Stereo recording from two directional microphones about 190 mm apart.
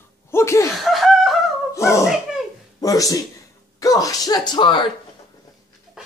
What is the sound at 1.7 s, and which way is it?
Dog, 15° left (ahead or behind).